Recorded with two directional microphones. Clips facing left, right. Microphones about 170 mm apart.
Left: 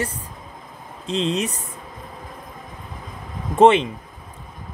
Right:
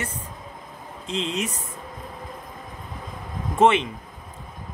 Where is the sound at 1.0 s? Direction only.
35° left (ahead or behind).